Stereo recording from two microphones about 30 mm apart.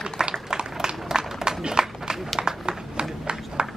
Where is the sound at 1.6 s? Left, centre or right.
Right.